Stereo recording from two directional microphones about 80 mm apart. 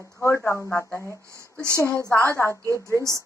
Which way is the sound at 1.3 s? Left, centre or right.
Right.